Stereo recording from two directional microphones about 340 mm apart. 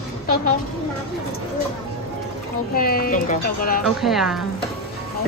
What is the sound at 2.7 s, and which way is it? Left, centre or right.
Speech, left.